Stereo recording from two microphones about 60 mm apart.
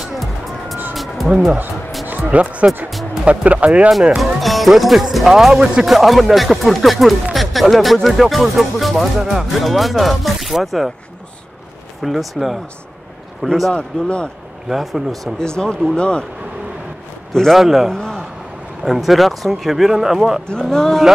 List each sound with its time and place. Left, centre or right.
0.0 s music: centre
0.9 s vehicle: centre
2.2 s speech: right
4.2 s speech: centre
12.0 s speech: centre
13.7 s a man's voice: centre
14.7 s speech: centre
15.3 s a man's voice: centre
17.3 s a man's voice: centre
17.6 s speech: centre
17.9 s a sound: centre
18.9 s speech: centre
20.7 s a man's voice: centre